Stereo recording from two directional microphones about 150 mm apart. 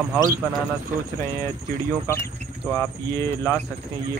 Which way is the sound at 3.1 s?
20° left (ahead or behind).